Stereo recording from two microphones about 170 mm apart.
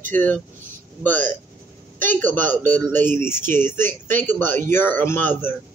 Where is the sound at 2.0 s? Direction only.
10° left (ahead or behind).